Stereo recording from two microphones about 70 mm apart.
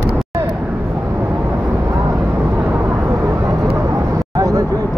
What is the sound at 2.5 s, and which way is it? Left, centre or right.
Vehicle, right.